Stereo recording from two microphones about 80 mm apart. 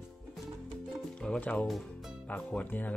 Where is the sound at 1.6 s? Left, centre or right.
Centre.